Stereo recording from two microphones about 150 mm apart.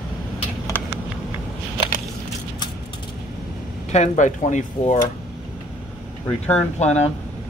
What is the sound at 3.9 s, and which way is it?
Speech, 50° left (ahead or behind).